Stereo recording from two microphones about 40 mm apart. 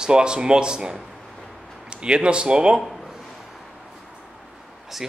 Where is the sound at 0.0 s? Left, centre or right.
Right.